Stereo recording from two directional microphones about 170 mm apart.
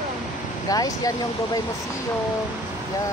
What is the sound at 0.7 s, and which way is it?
Speech, 20° left (ahead or behind).